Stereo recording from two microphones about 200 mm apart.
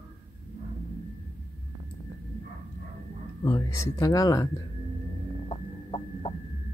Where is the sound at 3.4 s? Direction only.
20° left (ahead or behind).